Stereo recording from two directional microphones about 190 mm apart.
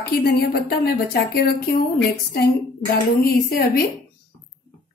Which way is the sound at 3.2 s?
50° left (ahead or behind).